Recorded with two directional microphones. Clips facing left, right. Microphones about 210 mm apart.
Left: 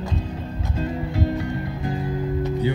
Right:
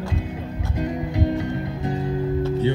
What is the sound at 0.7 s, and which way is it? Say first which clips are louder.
Music: right 1 dB; 15° right (ahead or behind).